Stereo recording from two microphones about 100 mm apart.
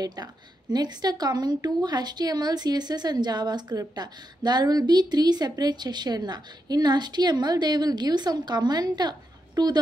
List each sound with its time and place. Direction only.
0.0 s a woman's voice: 45° right (ahead or behind)